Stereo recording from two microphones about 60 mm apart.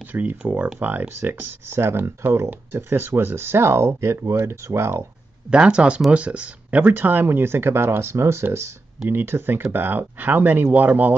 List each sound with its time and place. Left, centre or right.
0.1 s speech: right
5.5 s speech: centre